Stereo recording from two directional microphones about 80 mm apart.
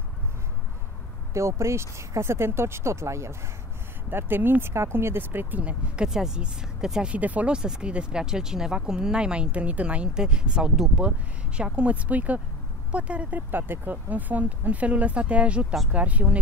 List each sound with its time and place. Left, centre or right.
1.3 s speech: right; by 16.3 s centre